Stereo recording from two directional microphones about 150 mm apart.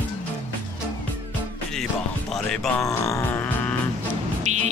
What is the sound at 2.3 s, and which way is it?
Speech, 5° left (ahead or behind).